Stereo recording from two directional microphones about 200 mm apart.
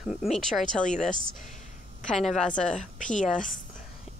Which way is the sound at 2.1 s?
Centre (ahead or behind).